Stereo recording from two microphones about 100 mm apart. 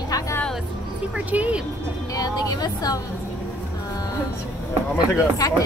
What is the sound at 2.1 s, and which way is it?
Speech, 40° left (ahead or behind).